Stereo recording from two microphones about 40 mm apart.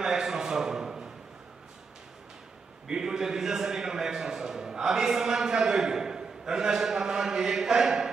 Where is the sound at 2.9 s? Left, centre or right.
Centre.